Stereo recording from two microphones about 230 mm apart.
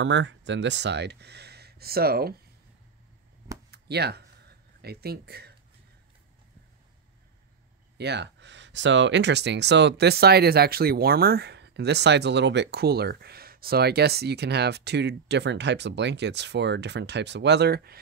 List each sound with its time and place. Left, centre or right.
0.0 s speech: right
3.7 s a sound: right
8.0 s speech: right